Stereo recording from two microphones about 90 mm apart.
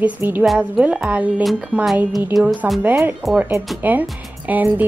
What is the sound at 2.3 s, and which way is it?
Music, centre (ahead or behind).